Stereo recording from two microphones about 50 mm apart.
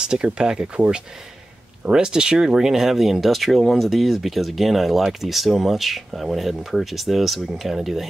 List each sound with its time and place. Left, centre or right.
0.0 s speech: centre